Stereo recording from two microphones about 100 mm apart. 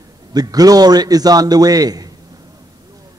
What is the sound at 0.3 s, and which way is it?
A man's voice, 40° right (ahead or behind).